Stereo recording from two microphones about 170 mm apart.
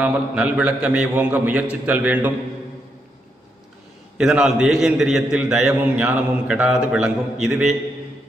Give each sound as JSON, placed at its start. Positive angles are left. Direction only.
{"t": 0.0, "sound": "a man's voice", "side_deg": -5}
{"t": 4.2, "sound": "a man's voice", "side_deg": -5}